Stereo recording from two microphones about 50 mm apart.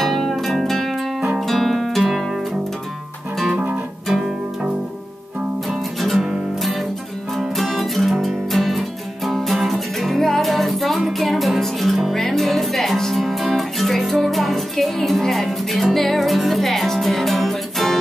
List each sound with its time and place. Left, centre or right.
0.0 s music: centre
3.5 s music: right
4.1 s music: centre
5.7 s music: centre
7.3 s music: centre